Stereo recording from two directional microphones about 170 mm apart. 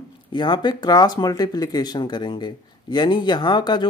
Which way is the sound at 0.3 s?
25° left (ahead or behind).